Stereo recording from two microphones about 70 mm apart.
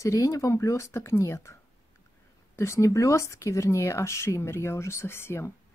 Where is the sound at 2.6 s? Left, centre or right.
Left.